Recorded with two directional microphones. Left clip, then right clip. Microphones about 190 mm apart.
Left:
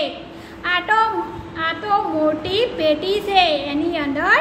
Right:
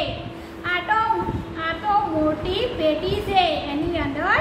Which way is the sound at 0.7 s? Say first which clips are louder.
Left 4 dB; 55° left (ahead or behind).